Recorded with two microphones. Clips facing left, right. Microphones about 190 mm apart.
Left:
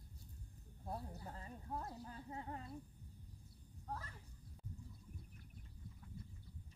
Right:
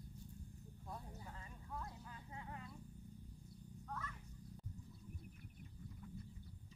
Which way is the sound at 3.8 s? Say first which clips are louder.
Left 1 dB; 30° left (ahead or behind).